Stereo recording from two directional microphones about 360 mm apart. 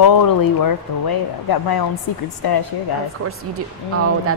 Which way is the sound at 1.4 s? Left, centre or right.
Left.